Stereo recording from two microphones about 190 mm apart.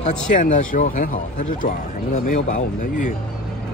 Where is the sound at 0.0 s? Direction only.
40° left (ahead or behind).